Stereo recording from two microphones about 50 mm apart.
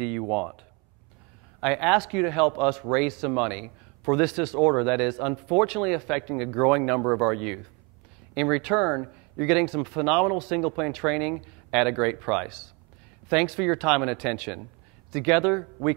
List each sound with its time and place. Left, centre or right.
0.0 s speech: centre
1.6 s speech: centre